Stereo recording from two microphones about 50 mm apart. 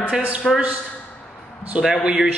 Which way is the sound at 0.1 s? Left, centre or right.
Right.